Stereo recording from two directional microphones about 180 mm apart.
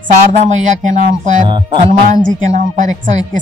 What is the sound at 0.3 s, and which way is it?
Speech, 40° right (ahead or behind).